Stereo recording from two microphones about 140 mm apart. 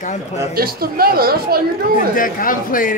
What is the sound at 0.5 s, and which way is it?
A woman's voice, 90° right.